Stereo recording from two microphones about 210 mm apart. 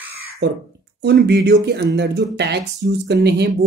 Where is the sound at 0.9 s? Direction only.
55° right (ahead or behind).